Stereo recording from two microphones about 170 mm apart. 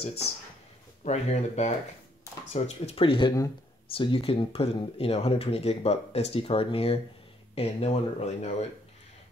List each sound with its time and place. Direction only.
1.0 s speech: 40° left (ahead or behind)